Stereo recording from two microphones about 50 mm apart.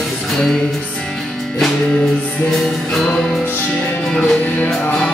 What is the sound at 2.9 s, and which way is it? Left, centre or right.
Music, centre.